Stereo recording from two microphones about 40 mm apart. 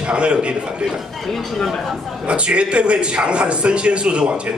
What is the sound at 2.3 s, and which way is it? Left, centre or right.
A man's voice, right.